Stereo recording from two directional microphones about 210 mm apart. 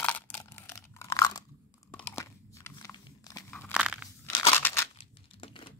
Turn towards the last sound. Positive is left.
turn(degrees=25)  # may be behind; listen again after turning